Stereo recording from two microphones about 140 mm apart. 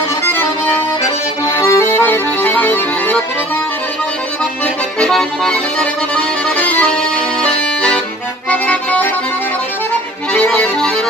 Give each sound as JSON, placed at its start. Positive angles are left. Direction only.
{"t": 0.2, "sound": "accordion", "side_deg": 15}
{"t": 5.0, "sound": "accordion", "side_deg": 5}
{"t": 10.3, "sound": "accordion", "side_deg": 10}